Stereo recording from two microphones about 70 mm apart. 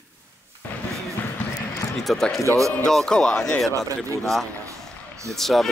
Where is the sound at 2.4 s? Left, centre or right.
Right.